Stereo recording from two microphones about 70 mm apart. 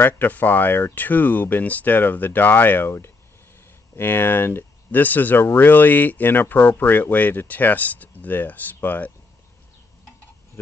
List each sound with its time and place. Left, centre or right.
0.0 s speech: left